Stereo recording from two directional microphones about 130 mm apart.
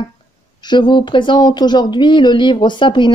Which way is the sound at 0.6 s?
35° left (ahead or behind).